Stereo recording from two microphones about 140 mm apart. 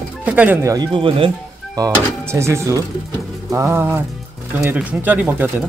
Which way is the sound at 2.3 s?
20° right (ahead or behind).